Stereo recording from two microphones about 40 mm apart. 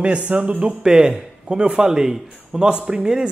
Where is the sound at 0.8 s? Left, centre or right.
Centre.